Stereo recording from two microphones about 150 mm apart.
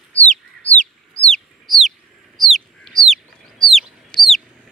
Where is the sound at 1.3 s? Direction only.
Centre (ahead or behind).